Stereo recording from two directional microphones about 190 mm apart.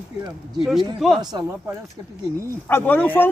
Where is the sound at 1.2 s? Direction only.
20° right (ahead or behind).